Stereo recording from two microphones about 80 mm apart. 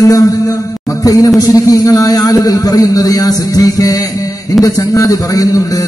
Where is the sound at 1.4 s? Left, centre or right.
Left.